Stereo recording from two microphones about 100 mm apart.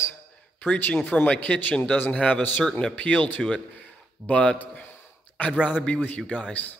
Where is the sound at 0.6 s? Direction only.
20° left (ahead or behind).